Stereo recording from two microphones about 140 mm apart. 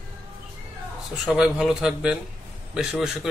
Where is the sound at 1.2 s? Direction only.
5° right (ahead or behind).